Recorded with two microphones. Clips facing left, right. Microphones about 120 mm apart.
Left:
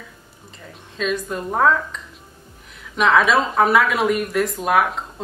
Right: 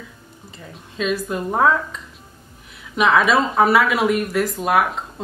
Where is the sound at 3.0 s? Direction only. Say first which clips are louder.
Even; centre (ahead or behind).